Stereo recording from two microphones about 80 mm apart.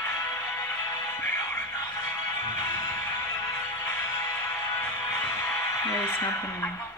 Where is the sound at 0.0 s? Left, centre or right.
Left.